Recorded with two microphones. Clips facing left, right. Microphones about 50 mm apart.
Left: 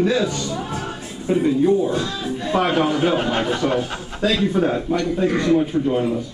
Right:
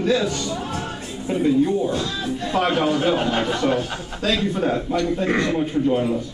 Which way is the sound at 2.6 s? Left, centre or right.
Centre.